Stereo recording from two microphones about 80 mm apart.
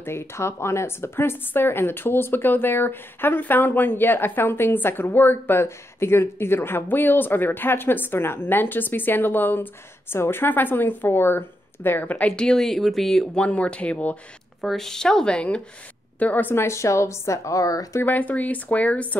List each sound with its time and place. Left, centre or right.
0.0 s speech: left
12.4 s speech: centre
13.4 s speech: centre
14.6 s a woman's voice: centre; by 18.0 s left
18.0 s speech: left